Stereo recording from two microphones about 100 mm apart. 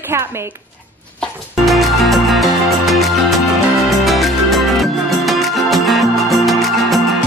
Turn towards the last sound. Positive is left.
turn(degrees=0)  # may be behind; listen again after turning